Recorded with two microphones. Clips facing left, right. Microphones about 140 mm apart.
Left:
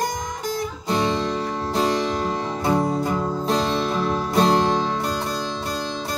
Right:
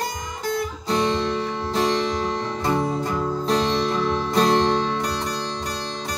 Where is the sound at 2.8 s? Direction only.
30° left (ahead or behind).